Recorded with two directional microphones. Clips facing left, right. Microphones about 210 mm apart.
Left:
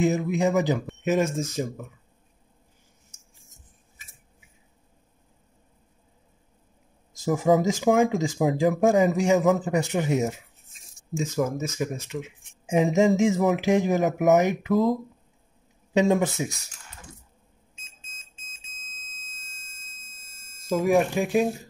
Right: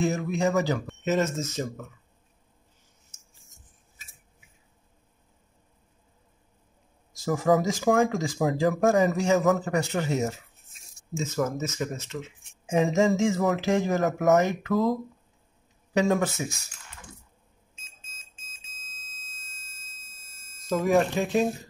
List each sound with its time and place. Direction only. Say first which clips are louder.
0.0 s speech: left 3 dB; 20° left (ahead or behind)
7.2 s speech: left 2 dB; 20° left (ahead or behind)
20.6 s speech: left 1 dB; 10° left (ahead or behind)